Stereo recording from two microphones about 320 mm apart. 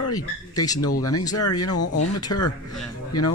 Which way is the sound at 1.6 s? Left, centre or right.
Left.